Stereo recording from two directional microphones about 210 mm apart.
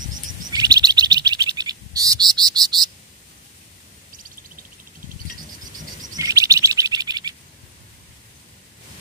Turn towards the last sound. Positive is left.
turn(degrees=-20)  # may be behind; listen again after turning